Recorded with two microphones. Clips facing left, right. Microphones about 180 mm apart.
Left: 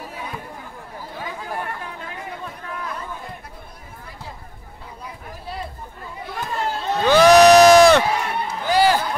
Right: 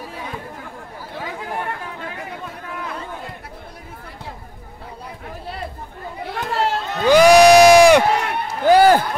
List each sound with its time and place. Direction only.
6.3 s chatter: 80° right
7.1 s crowd: 10° right (ahead or behind)
8.1 s run: 55° right (ahead or behind)